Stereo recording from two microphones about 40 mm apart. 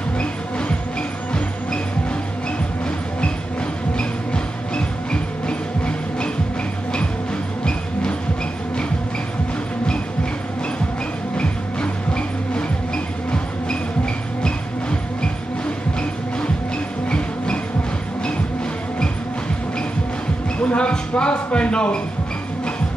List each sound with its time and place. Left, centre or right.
4.7 s music: left
11.3 s music: left
20.6 s a sound: left